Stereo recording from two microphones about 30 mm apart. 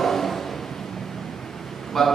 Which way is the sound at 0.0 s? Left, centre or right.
Centre.